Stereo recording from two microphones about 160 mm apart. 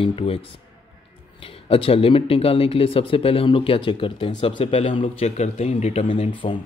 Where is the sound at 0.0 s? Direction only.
35° left (ahead or behind).